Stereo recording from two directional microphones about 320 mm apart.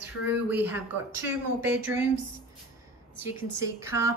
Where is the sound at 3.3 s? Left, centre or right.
Centre.